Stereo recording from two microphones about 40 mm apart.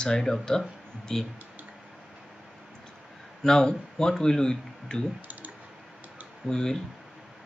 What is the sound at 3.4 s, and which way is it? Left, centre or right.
Speech, centre.